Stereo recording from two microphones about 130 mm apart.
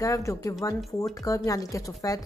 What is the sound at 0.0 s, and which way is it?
Speech, 25° left (ahead or behind).